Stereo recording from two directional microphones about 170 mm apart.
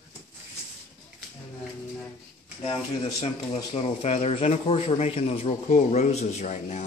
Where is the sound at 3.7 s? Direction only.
40° left (ahead or behind).